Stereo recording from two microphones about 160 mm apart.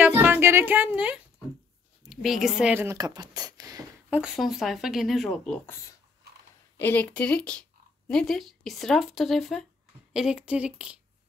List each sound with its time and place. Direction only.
0.0 s a sound: 10° right (ahead or behind)
2.0 s speech: centre (ahead or behind); by 3.8 s 25° right (ahead or behind)
4.1 s speech: 5° right (ahead or behind)
6.8 s speech: 10° left (ahead or behind); by 11.0 s 5° right (ahead or behind)